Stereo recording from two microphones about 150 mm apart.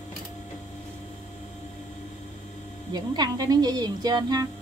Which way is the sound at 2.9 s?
30° right (ahead or behind).